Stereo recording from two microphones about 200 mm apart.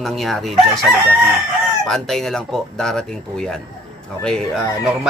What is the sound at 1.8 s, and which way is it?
Speech, centre (ahead or behind).